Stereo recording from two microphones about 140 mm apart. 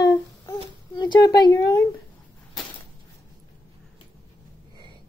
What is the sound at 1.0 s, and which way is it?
Speech, 30° left (ahead or behind).